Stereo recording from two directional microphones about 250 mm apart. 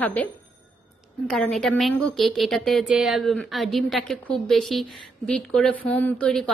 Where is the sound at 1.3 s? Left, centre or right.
Centre.